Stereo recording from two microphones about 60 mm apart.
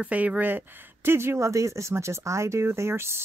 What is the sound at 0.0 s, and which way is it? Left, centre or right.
Speech, right.